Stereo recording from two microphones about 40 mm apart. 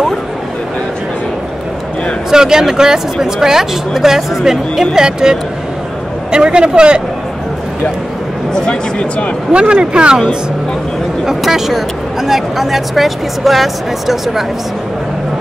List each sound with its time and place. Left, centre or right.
2.3 s speech: centre
9.5 s speech: right
11.4 s speech: centre